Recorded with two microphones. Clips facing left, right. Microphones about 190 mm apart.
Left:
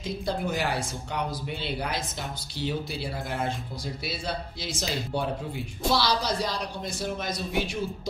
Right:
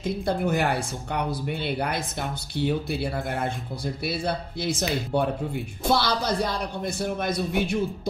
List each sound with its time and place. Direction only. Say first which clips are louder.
0.0 s speech: right 4 dB; 55° right (ahead or behind)